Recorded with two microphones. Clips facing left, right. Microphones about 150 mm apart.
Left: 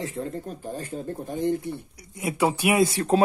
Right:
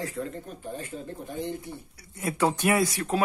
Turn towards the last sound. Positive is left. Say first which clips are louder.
# left 6 dB
turn(degrees=30)  # may be behind; listen again after turning